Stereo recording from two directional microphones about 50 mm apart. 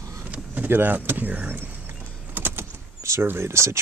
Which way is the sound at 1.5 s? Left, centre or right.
Right.